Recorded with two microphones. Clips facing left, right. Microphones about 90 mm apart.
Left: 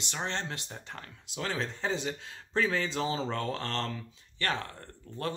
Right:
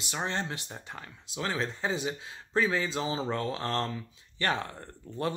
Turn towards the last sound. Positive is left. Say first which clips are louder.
# right 3 dB
turn(degrees=-15)  # may be behind; listen again after turning